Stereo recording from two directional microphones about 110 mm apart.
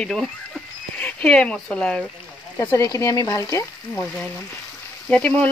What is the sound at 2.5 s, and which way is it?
Speech, 25° left (ahead or behind).